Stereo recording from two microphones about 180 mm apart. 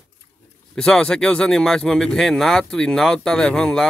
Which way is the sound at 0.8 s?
5° left (ahead or behind).